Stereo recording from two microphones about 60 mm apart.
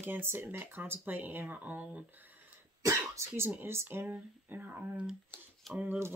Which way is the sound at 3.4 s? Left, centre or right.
Right.